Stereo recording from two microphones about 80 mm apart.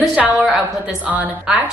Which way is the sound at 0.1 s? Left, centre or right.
Centre.